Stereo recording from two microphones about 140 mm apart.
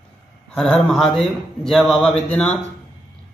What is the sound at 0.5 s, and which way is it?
Speech, 5° left (ahead or behind).